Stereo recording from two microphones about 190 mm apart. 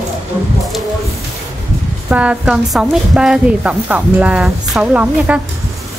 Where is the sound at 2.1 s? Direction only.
5° right (ahead or behind).